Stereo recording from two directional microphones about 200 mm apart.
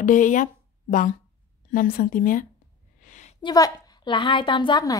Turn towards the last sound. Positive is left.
turn(degrees=20)  # may be behind; listen again after turning